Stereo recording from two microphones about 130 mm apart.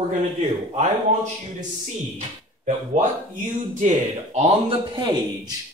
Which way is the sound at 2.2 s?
60° right (ahead or behind).